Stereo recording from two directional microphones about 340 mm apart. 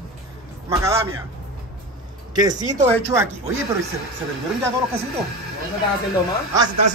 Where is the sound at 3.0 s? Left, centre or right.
Centre.